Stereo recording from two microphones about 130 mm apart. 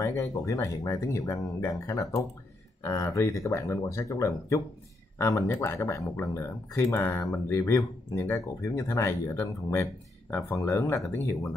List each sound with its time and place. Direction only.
0.0 s speech: 25° left (ahead or behind)